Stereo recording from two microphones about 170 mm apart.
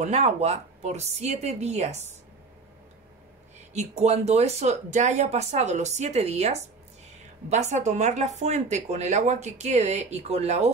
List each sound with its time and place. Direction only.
0.0 s speech: 40° right (ahead or behind)
3.7 s speech: 40° right (ahead or behind)